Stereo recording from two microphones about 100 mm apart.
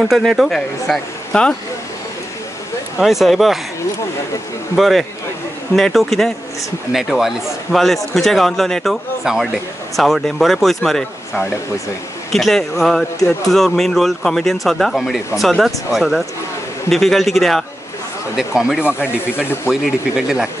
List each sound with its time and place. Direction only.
0.0 s speech: centre (ahead or behind)
3.0 s speech: centre (ahead or behind)
4.7 s speech: centre (ahead or behind)
19.3 s speech: 20° left (ahead or behind)
19.7 s speech: 5° right (ahead or behind)